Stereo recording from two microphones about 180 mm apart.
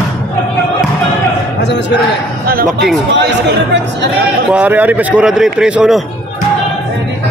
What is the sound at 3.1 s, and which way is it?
Speech, 75° right (ahead or behind).